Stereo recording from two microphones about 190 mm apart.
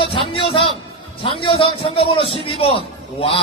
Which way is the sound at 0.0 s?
30° left (ahead or behind).